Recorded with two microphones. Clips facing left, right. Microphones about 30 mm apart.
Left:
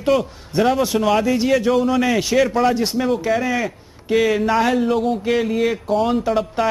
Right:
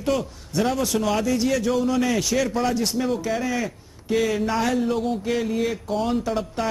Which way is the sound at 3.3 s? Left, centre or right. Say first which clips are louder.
Left 5 dB; centre.